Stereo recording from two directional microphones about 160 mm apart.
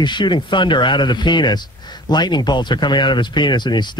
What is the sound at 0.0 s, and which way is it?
Speech, 30° left (ahead or behind).